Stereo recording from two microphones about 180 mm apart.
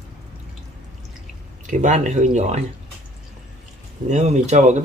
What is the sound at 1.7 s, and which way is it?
Speech, 45° right (ahead or behind).